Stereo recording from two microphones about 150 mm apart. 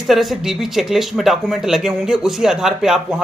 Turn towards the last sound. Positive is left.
turn(degrees=-5)  # may be behind; listen again after turning